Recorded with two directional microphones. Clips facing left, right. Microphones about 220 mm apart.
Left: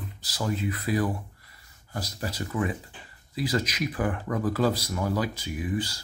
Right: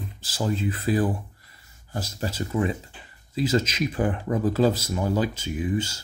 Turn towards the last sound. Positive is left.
turn(degrees=-25)  # may be behind; listen again after turning